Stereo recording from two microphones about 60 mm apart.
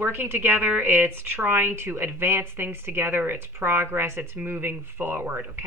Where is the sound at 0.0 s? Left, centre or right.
Right.